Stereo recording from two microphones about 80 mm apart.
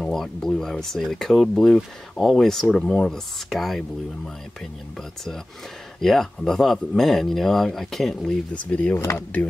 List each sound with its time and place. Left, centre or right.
0.0 s speech: centre
5.9 s speech: centre
8.6 s speech: centre